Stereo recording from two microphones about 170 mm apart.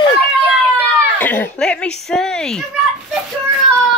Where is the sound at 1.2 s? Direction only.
10° left (ahead or behind).